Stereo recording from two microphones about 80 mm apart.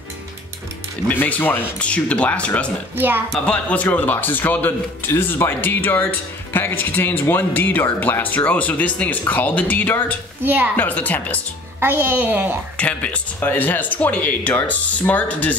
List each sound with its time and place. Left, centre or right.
1.0 s speech: left
10.4 s a child's voice: right
10.8 s speech: left
11.8 s a child's voice: right
12.7 s speech: centre